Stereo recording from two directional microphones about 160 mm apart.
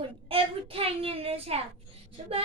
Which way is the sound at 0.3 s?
35° right (ahead or behind).